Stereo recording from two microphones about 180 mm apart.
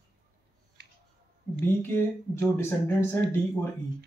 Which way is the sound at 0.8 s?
65° right (ahead or behind).